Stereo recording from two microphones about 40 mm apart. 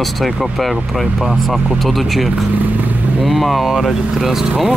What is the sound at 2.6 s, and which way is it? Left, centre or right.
Vehicle, right.